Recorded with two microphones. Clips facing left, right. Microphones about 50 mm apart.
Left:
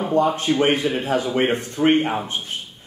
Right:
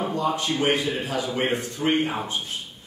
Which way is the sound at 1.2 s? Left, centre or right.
Left.